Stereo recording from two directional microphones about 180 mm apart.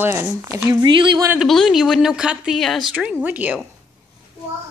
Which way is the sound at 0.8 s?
25° right (ahead or behind).